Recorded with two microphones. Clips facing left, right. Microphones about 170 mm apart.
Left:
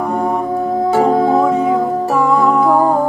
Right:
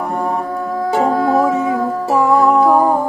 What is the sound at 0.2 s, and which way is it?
Music, 20° left (ahead or behind).